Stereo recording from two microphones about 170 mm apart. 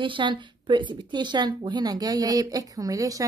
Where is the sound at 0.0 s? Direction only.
30° right (ahead or behind).